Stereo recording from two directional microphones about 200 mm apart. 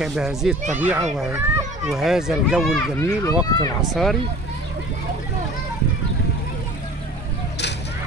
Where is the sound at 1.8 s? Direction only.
Centre (ahead or behind).